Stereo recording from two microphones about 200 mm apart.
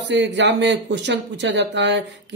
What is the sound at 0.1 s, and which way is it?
Speech, 60° right (ahead or behind).